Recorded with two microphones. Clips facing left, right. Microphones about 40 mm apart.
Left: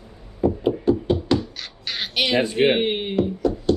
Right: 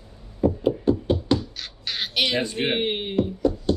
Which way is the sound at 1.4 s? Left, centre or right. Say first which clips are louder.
Left 1 dB; centre.